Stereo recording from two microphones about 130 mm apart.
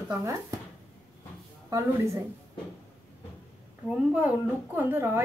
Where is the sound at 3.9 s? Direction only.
10° right (ahead or behind).